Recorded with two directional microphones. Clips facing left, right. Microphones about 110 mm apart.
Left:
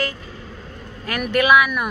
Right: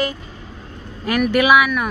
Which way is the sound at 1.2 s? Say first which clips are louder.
Right 1 dB; 5° right (ahead or behind).